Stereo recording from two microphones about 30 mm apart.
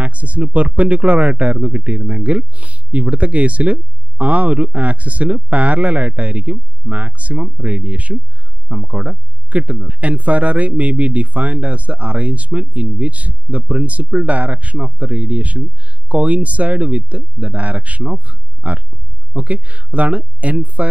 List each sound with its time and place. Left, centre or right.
0.0 s speech: right